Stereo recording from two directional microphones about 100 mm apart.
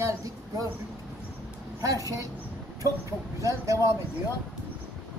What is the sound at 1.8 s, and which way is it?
Speech, 35° right (ahead or behind).